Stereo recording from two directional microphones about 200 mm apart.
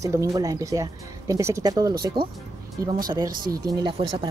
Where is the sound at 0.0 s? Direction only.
15° right (ahead or behind).